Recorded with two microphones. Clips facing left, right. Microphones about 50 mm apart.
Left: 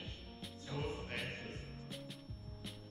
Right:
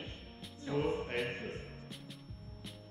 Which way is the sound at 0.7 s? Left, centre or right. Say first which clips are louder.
Right 9 dB; right.